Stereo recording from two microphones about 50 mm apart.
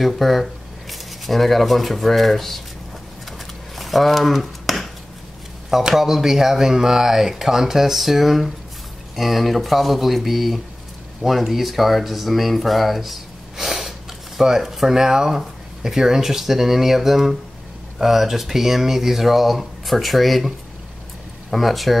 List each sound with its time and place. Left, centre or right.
0.0 s speech: centre
3.7 s a sound: centre
5.7 s speech: centre